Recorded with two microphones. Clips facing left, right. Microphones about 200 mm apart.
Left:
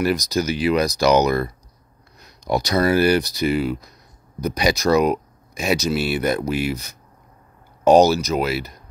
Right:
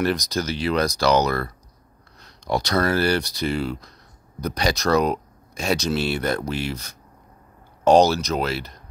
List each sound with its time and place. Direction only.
0.3 s speech: 15° left (ahead or behind)